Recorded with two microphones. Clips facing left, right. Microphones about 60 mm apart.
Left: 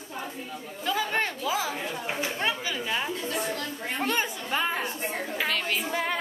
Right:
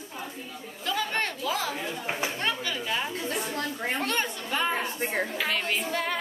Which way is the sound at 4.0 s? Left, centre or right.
Centre.